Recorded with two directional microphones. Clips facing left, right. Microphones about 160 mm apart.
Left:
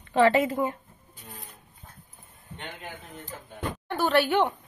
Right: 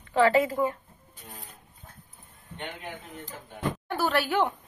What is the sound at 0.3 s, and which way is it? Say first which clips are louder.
Speech: even; 20° left (ahead or behind).